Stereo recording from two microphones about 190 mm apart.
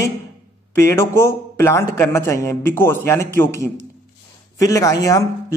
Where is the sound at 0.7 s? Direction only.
15° left (ahead or behind).